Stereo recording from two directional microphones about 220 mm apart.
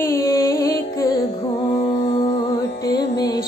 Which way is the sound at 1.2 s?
30° left (ahead or behind).